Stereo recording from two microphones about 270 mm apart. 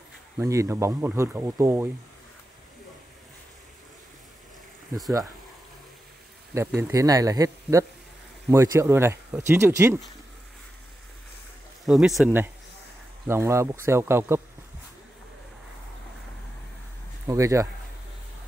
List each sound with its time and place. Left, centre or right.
0.4 s speech: centre
4.9 s speech: centre
6.8 s speech: centre
11.8 s speech: centre
17.3 s speech: centre